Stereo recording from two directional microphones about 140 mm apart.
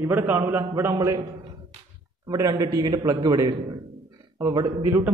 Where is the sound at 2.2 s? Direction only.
25° right (ahead or behind).